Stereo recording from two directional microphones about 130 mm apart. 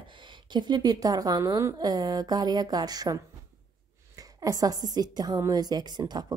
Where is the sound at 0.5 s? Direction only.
35° right (ahead or behind).